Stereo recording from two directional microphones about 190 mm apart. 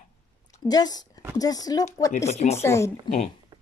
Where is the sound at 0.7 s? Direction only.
20° left (ahead or behind).